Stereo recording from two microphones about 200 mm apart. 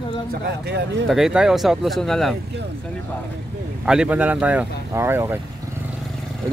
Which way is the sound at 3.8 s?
5° right (ahead or behind).